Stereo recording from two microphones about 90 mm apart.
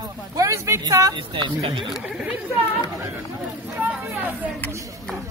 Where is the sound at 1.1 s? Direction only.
65° right (ahead or behind).